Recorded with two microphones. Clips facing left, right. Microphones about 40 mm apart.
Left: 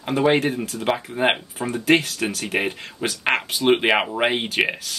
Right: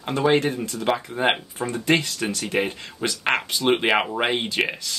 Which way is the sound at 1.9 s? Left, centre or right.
Left.